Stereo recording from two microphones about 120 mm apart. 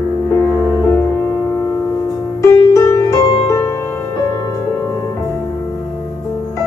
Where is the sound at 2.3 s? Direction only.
25° left (ahead or behind).